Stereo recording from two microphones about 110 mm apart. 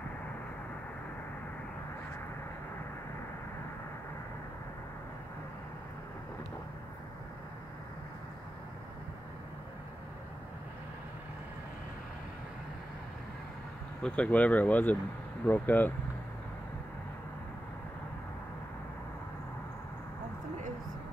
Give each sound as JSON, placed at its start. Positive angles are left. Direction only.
{"t": 14.0, "sound": "speech", "side_deg": 10}